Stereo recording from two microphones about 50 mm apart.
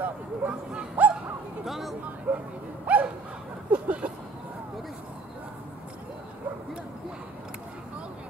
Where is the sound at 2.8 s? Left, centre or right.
Right.